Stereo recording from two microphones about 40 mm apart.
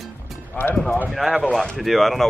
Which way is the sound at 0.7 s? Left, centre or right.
Centre.